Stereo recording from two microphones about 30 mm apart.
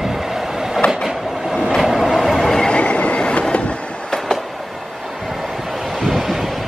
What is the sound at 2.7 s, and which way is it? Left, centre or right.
Train, left.